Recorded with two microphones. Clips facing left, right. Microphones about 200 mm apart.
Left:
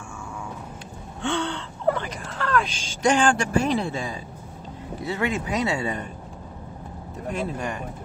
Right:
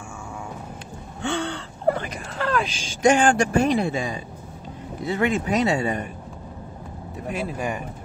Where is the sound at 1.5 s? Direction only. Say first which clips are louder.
Right 1 dB; 45° right (ahead or behind).